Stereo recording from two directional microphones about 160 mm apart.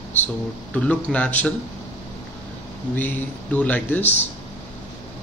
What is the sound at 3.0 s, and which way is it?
Speech, 10° left (ahead or behind).